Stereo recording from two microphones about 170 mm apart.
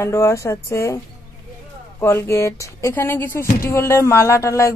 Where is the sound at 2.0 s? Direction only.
15° left (ahead or behind).